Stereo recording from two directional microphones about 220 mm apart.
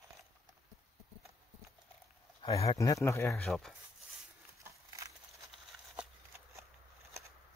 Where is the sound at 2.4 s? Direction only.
15° left (ahead or behind).